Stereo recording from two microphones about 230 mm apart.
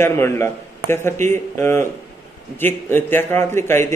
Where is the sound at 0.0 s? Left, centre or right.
Centre.